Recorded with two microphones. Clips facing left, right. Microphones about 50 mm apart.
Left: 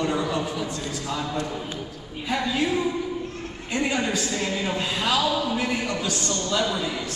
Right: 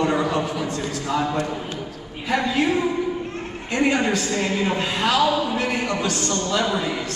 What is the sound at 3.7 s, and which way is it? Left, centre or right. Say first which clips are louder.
A man's voice: right 5 dB; right.